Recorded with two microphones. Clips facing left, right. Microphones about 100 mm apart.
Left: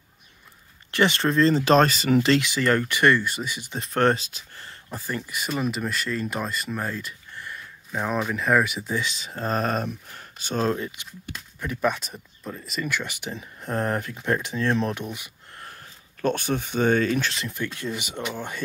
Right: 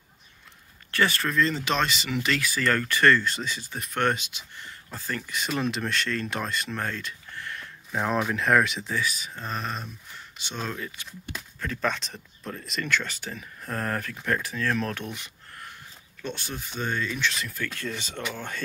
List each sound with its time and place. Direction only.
0.9 s speech: 25° left (ahead or behind)
3.8 s speech: 35° left (ahead or behind)
4.8 s speech: 15° left (ahead or behind)
7.9 s speech: centre (ahead or behind)
8.9 s speech: 25° left (ahead or behind); by 10.8 s 40° left (ahead or behind)
11.6 s speech: 15° left (ahead or behind)
16.2 s speech: 55° left (ahead or behind)
17.2 s speech: 30° left (ahead or behind); by 18.6 s 15° left (ahead or behind)